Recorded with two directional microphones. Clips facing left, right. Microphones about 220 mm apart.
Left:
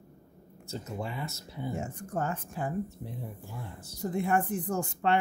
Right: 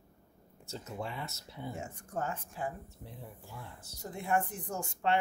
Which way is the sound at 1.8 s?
50° left (ahead or behind).